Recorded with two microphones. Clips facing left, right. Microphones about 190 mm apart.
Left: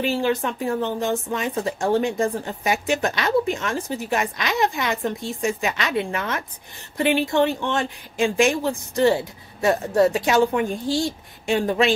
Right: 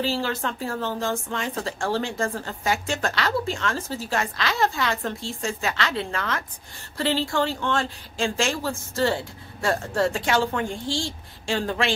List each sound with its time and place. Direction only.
0.0 s speech: 15° left (ahead or behind)